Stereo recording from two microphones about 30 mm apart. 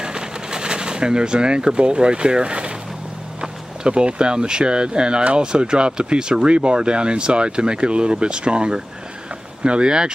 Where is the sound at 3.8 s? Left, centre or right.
Right.